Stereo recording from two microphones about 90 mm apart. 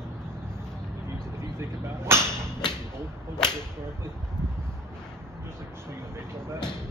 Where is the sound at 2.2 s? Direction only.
55° left (ahead or behind).